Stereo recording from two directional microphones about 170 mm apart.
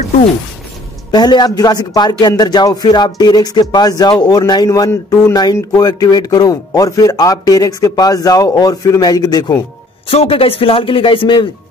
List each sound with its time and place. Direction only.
1.1 s speech: 25° left (ahead or behind)
10.0 s speech: 35° left (ahead or behind)